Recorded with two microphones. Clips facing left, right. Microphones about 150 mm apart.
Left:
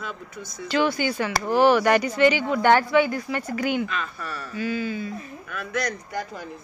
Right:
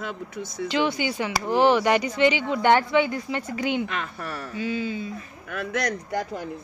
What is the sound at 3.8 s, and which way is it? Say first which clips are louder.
Speech: even; 70° right (ahead or behind).